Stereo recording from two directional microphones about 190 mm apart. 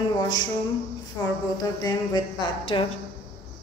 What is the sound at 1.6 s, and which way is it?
A woman's voice, 20° left (ahead or behind).